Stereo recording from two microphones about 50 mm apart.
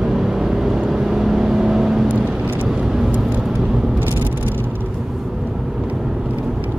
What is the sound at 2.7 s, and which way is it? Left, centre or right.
Vehicle, centre.